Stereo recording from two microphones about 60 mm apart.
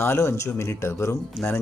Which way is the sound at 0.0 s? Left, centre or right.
Left.